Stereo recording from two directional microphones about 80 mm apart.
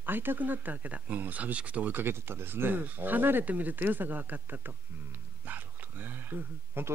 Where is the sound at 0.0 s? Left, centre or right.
Right.